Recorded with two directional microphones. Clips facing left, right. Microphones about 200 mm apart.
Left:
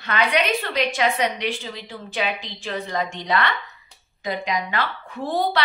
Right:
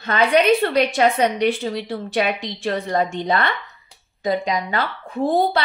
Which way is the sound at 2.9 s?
50° right (ahead or behind).